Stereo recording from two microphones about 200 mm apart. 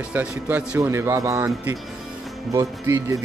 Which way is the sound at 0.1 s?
10° right (ahead or behind).